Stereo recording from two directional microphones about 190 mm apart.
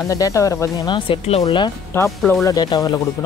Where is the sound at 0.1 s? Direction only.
15° left (ahead or behind).